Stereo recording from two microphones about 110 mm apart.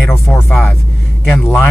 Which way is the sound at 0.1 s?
15° left (ahead or behind).